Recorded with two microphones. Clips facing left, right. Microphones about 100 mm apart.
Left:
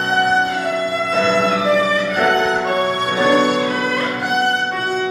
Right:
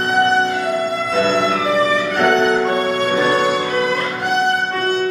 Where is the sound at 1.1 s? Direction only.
Centre (ahead or behind).